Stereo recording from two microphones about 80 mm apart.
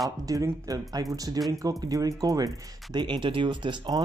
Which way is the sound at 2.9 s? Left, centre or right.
Right.